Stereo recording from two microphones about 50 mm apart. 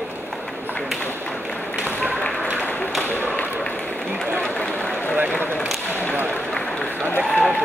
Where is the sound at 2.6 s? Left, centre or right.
Left.